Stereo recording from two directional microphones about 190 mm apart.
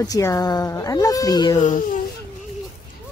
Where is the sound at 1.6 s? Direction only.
45° left (ahead or behind).